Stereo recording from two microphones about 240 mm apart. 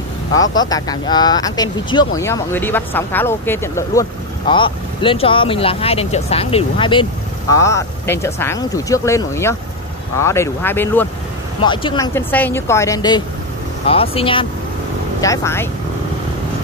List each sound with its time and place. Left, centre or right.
0.6 s speech: centre
11.6 s speech: centre